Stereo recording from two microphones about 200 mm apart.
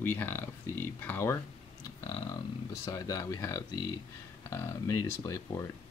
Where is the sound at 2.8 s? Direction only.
15° left (ahead or behind).